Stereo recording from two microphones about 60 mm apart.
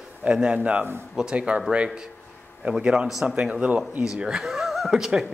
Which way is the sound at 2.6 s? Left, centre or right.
Centre.